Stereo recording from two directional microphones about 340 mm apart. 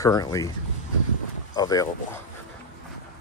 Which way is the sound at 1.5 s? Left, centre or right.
Centre.